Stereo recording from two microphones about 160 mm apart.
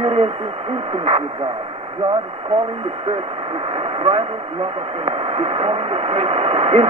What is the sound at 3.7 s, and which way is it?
Speech, 40° right (ahead or behind).